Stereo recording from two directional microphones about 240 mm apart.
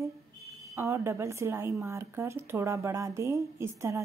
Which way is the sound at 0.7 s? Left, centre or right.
Centre.